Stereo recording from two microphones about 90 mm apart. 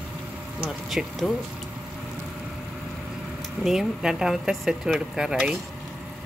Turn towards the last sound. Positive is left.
turn(degrees=-5)  # may be behind; listen again after turning